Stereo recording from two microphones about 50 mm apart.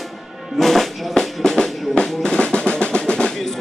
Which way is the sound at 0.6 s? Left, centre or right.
Centre.